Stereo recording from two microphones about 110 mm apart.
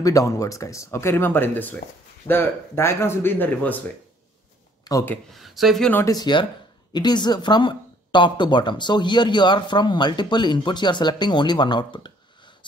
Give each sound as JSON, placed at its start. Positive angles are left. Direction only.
{"t": 0.0, "sound": "speech", "side_deg": 30}
{"t": 4.9, "sound": "speech", "side_deg": 40}
{"t": 5.3, "sound": "speech", "side_deg": 0}
{"t": 6.0, "sound": "speech", "side_deg": 40}